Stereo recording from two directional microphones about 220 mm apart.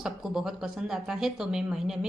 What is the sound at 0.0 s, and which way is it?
A woman's voice, centre (ahead or behind).